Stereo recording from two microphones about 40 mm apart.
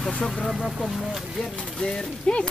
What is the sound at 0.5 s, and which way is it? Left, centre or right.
Speech, centre.